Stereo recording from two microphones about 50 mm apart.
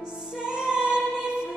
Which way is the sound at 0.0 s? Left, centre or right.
Centre.